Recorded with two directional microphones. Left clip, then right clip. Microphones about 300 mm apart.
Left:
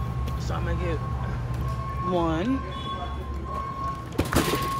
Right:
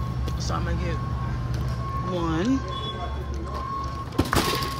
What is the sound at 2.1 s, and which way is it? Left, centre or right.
Speech, centre.